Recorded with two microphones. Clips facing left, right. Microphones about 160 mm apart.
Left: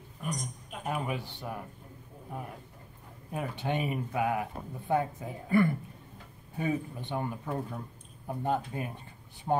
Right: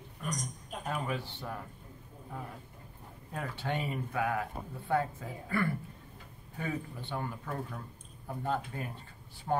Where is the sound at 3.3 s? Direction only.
15° left (ahead or behind).